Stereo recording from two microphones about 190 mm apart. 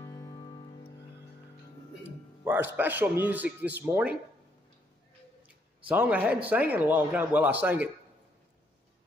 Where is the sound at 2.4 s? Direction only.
10° right (ahead or behind).